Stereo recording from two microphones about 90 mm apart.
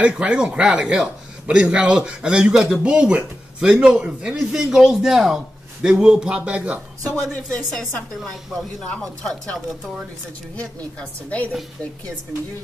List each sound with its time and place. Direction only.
0.0 s a man's voice: 10° right (ahead or behind)
7.5 s a woman's voice: 5° left (ahead or behind)